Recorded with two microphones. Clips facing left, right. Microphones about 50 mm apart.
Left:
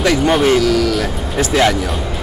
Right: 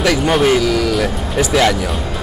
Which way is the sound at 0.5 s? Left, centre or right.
Right.